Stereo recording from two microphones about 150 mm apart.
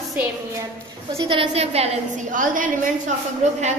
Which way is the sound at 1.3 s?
40° right (ahead or behind).